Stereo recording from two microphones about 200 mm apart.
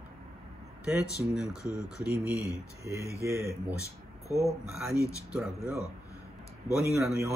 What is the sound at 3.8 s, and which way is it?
Speech, 15° left (ahead or behind).